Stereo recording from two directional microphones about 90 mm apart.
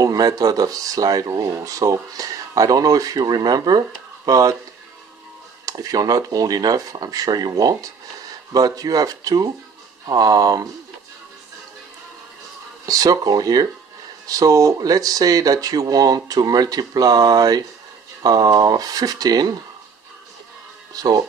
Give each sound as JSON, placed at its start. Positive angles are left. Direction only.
{"t": 0.0, "sound": "speech", "side_deg": -40}
{"t": 5.7, "sound": "speech", "side_deg": -45}
{"t": 12.8, "sound": "speech", "side_deg": -45}
{"t": 20.9, "sound": "speech", "side_deg": -45}